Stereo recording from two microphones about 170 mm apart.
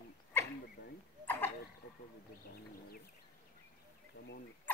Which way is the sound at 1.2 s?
10° left (ahead or behind).